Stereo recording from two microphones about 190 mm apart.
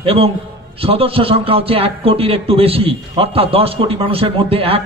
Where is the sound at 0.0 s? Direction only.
30° right (ahead or behind).